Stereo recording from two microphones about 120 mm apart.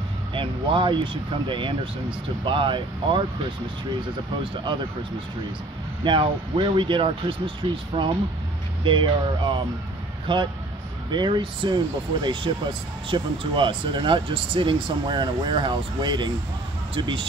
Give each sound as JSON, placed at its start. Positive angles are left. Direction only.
{"t": 0.3, "sound": "speech", "side_deg": -45}
{"t": 6.0, "sound": "speech", "side_deg": -45}